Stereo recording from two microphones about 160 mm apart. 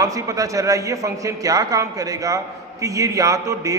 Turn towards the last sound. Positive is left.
turn(degrees=-20)  # may be behind; listen again after turning